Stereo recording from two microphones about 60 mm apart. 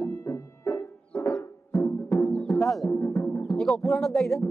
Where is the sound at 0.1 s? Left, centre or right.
Left.